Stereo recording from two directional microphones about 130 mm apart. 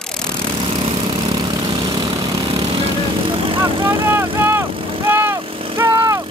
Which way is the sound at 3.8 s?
20° right (ahead or behind).